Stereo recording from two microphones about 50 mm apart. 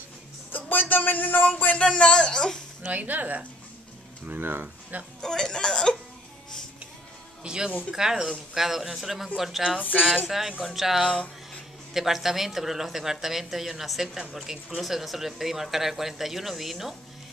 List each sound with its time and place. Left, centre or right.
0.5 s speech: left
1.8 s speech: centre
2.8 s speech: right
4.3 s speech: right
5.2 s speech: centre
7.4 s speech: centre
9.9 s speech: centre
10.2 s speech: centre